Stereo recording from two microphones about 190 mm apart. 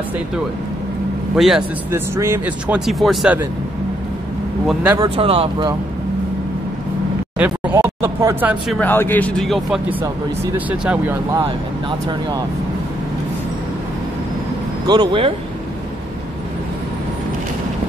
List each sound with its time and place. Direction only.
1.3 s a man's voice: centre (ahead or behind)
1.9 s speech: 15° right (ahead or behind)
4.8 s speech: 20° right (ahead or behind)
5.1 s speech: 30° right (ahead or behind)
7.3 s speech: 5° right (ahead or behind)
8.7 s speech: 10° left (ahead or behind); by 11.4 s 10° right (ahead or behind)
14.9 s speech: 25° right (ahead or behind)